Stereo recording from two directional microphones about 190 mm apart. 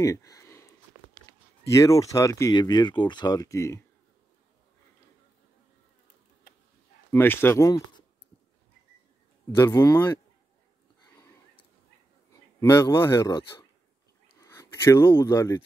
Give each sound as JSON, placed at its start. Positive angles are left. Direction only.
{"t": 0.0, "sound": "a sound", "side_deg": 15}
{"t": 1.7, "sound": "speech", "side_deg": 15}
{"t": 7.1, "sound": "speech", "side_deg": 10}
{"t": 9.6, "sound": "speech", "side_deg": 15}
{"t": 12.3, "sound": "a man's voice", "side_deg": 15}
{"t": 14.4, "sound": "speech", "side_deg": 15}